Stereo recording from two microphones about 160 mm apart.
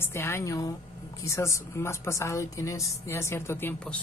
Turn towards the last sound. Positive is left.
turn(degrees=10)  # may be behind; listen again after turning